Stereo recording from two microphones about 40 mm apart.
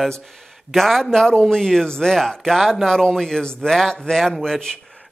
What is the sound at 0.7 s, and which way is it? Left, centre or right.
Speech, centre.